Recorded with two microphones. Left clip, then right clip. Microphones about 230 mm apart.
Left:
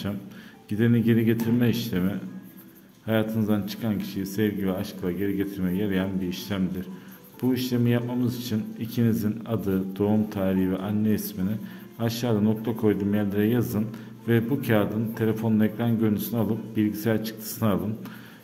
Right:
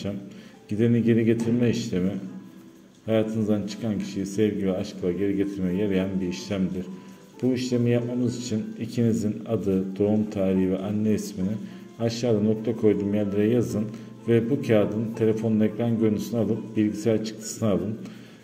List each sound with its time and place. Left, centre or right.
0.7 s speech: centre